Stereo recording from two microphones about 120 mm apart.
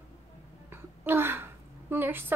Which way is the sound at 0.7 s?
20° right (ahead or behind).